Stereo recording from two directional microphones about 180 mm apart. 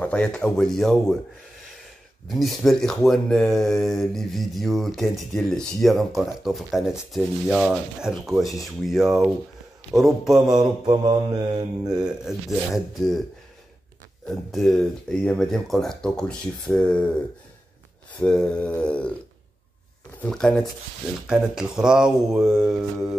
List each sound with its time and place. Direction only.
0.0 s speech: 5° left (ahead or behind)
2.2 s speech: centre (ahead or behind)
10.5 s mantra: 25° right (ahead or behind)
12.1 s speech: centre (ahead or behind)
14.2 s speech: centre (ahead or behind)
18.2 s speech: 5° left (ahead or behind)
18.8 s a sound: 5° left (ahead or behind)
20.2 s speech: 5° left (ahead or behind)